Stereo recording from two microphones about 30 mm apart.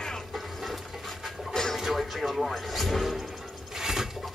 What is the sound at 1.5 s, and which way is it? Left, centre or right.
Television, centre.